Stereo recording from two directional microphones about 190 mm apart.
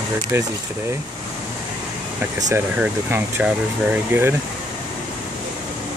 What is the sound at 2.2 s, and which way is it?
Speech, 15° right (ahead or behind).